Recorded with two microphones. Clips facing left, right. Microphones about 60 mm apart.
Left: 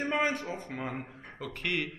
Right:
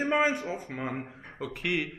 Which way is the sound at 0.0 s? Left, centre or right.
Centre.